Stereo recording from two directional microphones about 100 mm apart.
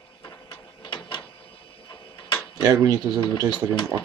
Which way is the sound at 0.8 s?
55° left (ahead or behind).